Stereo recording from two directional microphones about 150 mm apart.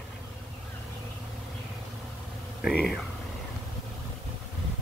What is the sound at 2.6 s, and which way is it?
Speech, centre (ahead or behind).